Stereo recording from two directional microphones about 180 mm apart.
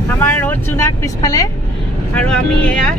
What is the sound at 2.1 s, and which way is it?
Speech, 5° left (ahead or behind).